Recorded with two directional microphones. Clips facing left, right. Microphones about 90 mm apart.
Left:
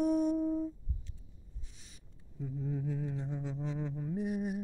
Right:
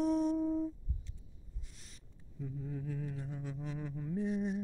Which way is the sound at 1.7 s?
Centre (ahead or behind).